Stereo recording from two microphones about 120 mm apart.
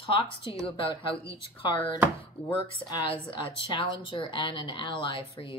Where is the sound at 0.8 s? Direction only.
45° left (ahead or behind).